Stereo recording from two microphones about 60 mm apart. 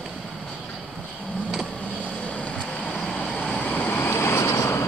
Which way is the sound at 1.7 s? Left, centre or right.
Centre.